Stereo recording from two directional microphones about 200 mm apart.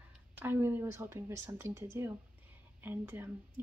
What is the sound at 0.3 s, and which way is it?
A woman's voice, 10° right (ahead or behind).